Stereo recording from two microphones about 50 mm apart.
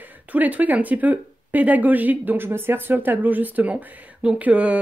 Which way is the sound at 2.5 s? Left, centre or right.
Right.